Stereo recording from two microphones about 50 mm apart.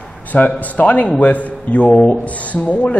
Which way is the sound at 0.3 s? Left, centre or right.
Left.